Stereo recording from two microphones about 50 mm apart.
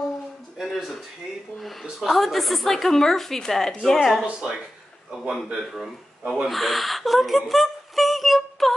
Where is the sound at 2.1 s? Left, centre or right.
Centre.